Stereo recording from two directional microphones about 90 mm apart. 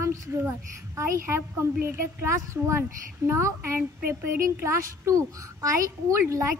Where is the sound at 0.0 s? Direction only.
35° right (ahead or behind).